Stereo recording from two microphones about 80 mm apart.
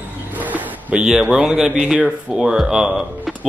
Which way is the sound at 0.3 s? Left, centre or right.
Right.